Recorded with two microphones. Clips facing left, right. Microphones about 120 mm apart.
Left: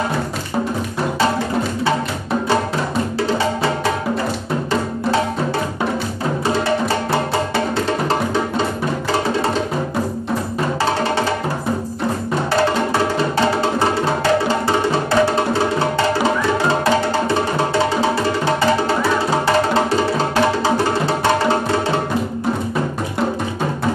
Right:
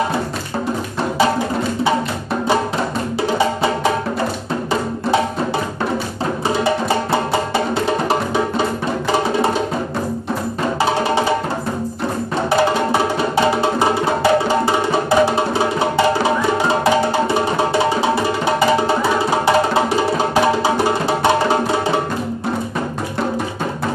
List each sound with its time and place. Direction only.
6.4 s music: 15° right (ahead or behind)
13.6 s music: 15° right (ahead or behind)
19.4 s music: 15° right (ahead or behind)